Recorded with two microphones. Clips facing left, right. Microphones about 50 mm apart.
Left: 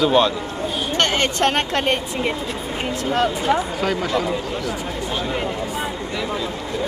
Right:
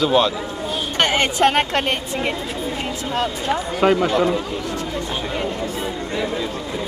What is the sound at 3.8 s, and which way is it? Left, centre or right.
Speech, right.